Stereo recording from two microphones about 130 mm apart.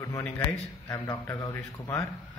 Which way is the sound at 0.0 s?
25° left (ahead or behind).